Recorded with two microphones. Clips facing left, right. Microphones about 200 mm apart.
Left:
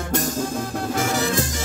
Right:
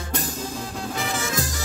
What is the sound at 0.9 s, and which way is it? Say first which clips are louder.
Music: left 5 dB; 40° left (ahead or behind).